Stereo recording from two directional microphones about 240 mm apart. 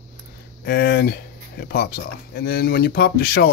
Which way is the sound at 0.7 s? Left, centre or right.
Left.